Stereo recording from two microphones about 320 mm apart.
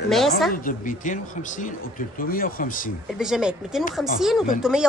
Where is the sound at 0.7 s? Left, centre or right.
Left.